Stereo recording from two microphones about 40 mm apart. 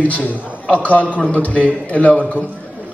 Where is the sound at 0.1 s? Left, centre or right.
Left.